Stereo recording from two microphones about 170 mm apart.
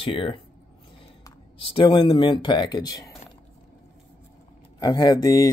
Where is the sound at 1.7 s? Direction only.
30° left (ahead or behind).